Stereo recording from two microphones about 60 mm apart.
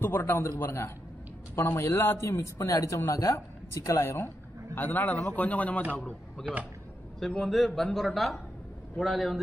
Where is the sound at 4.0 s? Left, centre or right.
Left.